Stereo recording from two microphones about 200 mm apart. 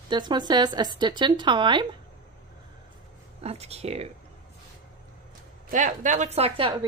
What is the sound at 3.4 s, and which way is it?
Speech, 30° right (ahead or behind).